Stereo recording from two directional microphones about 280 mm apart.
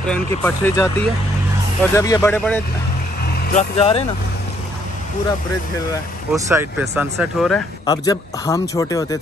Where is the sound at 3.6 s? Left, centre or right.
Left.